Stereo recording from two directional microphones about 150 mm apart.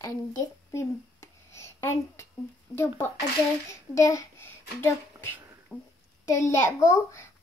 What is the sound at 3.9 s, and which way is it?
A child's voice, 20° left (ahead or behind).